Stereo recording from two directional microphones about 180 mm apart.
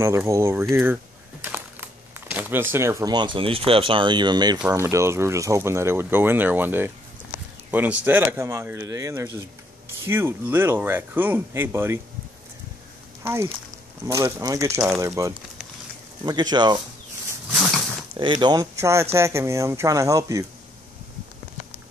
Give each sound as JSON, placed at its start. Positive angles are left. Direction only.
{"t": 0.0, "sound": "speech", "side_deg": -15}
{"t": 13.2, "sound": "speech", "side_deg": -15}
{"t": 18.1, "sound": "speech", "side_deg": -25}